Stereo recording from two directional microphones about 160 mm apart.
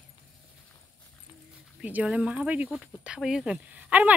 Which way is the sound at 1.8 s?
10° right (ahead or behind).